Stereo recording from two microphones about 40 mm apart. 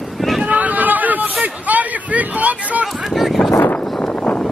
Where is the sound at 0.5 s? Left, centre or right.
Right.